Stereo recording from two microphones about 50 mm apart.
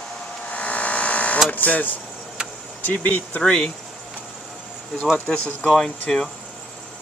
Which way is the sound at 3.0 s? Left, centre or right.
Left.